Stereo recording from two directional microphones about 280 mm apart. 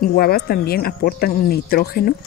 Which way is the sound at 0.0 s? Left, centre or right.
Left.